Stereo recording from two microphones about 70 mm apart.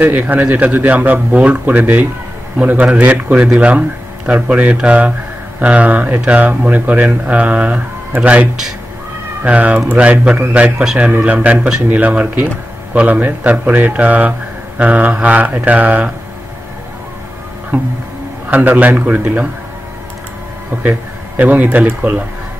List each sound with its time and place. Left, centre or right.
0.0 s speech: right
18.5 s speech: right
20.7 s speech: right